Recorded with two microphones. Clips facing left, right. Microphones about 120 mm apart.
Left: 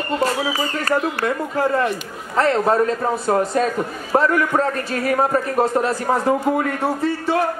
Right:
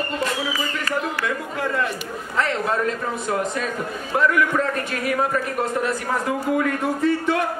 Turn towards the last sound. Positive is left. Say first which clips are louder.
# even
turn(degrees=35)  # may be behind; listen again after turning